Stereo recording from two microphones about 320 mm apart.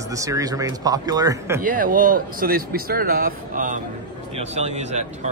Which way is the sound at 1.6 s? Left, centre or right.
Right.